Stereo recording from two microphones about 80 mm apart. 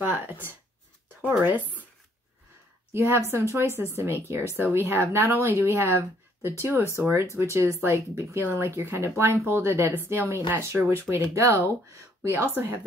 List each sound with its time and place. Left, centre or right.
1.4 s speech: right
2.9 s speech: right